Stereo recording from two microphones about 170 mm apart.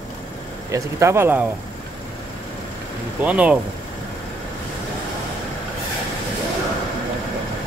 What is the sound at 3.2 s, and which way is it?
Speech, 5° right (ahead or behind).